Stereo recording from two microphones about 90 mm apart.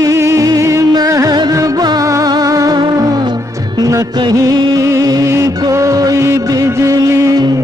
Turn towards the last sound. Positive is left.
turn(degrees=-35)  # may be behind; listen again after turning